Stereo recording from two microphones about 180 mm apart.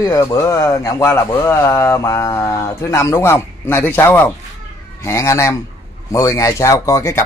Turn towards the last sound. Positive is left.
turn(degrees=15)  # may be behind; listen again after turning